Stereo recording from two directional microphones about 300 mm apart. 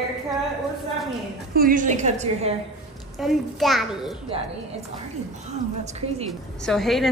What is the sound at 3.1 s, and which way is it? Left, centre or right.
Speech, centre.